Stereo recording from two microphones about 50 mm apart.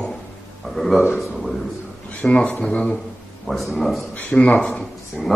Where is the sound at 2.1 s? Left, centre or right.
Left.